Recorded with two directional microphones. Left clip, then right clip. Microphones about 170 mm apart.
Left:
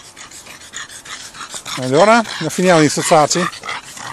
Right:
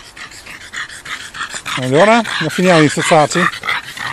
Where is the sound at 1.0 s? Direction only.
10° left (ahead or behind).